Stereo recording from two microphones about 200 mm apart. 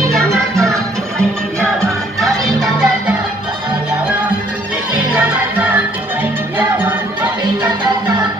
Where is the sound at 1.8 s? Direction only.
15° right (ahead or behind).